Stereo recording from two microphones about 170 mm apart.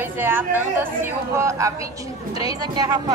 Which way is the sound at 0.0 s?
10° right (ahead or behind).